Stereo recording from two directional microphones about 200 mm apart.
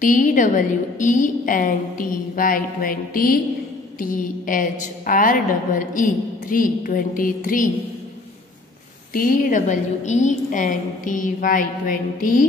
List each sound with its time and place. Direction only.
0.0 s a woman's voice: 40° left (ahead or behind)
9.1 s a woman's voice: 45° left (ahead or behind)